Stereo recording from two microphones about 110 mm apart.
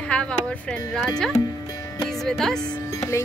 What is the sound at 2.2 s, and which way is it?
Speech, 5° left (ahead or behind).